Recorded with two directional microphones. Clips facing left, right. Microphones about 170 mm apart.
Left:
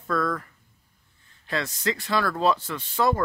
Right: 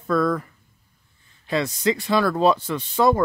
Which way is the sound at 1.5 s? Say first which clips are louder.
Right 6 dB; 15° right (ahead or behind).